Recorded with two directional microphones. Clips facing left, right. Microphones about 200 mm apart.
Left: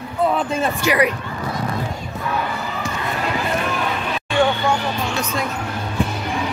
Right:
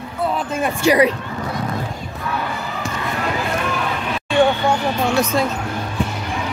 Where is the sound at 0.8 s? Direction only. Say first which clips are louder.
Right 5 dB; 30° right (ahead or behind).